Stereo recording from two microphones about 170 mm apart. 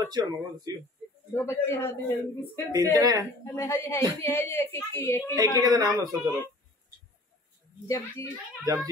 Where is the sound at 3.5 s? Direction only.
15° left (ahead or behind).